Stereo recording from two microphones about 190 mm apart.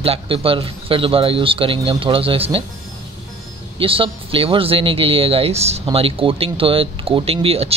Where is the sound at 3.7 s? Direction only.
30° right (ahead or behind).